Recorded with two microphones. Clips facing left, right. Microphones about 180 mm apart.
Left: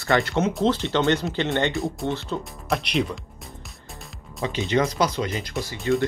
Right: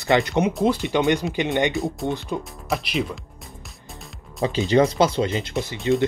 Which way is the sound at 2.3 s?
15° right (ahead or behind).